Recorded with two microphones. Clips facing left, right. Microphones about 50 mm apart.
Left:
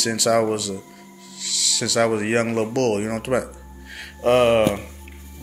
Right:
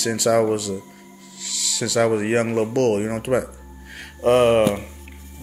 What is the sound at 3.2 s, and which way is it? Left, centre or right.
Speech, left.